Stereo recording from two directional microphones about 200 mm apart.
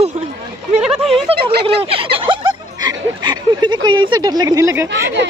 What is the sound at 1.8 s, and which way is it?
Speech, 30° right (ahead or behind).